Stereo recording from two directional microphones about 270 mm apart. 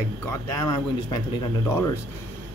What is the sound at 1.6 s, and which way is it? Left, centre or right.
Speech, centre.